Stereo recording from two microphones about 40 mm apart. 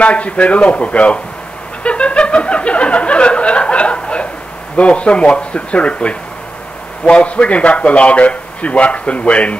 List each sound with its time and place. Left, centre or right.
0.0 s a man's voice: left
1.8 s music: left
4.7 s a man's voice: left